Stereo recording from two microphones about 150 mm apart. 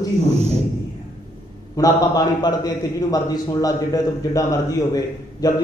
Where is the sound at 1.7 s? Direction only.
25° left (ahead or behind).